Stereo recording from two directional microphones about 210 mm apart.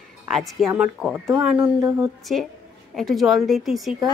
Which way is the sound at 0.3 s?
Centre (ahead or behind).